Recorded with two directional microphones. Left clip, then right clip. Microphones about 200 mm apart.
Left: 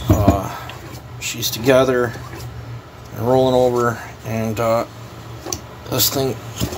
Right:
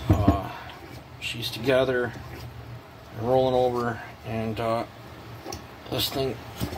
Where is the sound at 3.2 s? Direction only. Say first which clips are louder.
Left 7 dB; 25° left (ahead or behind).